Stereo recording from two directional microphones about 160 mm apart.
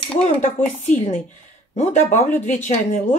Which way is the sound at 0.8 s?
50° left (ahead or behind).